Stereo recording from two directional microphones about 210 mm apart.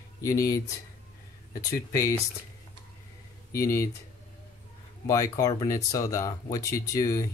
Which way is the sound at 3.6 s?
15° left (ahead or behind).